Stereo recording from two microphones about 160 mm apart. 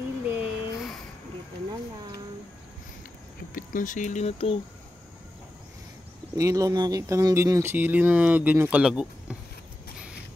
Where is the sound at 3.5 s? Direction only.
55° left (ahead or behind); by 4.5 s 40° left (ahead or behind).